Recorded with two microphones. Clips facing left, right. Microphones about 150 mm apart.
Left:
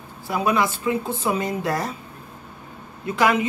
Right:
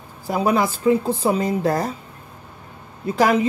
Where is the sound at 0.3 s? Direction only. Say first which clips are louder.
Right 2 dB; 35° right (ahead or behind).